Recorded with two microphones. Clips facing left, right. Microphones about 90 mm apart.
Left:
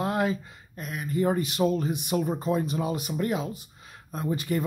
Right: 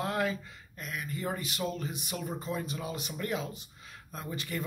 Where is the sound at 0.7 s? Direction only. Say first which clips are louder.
Left 8 dB; 35° left (ahead or behind).